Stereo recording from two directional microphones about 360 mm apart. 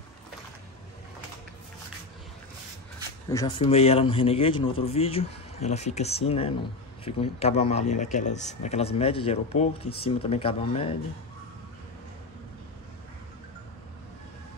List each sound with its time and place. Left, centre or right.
3.3 s speech: centre